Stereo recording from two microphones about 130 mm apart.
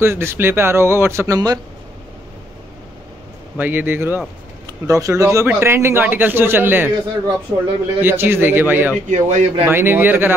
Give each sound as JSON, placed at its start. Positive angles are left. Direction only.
{"t": 0.0, "sound": "speech", "side_deg": -20}
{"t": 3.5, "sound": "a man's voice", "side_deg": -15}
{"t": 9.1, "sound": "speech", "side_deg": -65}
{"t": 9.7, "sound": "a man's voice", "side_deg": -15}